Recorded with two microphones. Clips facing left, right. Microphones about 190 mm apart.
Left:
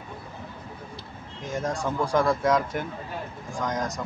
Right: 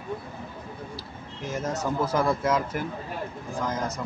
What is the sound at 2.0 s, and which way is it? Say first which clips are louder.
Speech: left 3 dB; 5° right (ahead or behind).